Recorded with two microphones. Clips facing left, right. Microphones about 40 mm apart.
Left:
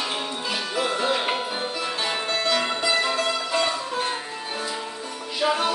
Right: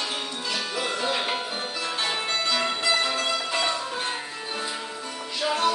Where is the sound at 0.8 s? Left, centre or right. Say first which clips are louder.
Left 5 dB; centre.